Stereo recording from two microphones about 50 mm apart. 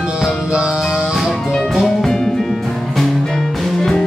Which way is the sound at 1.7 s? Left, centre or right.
Centre.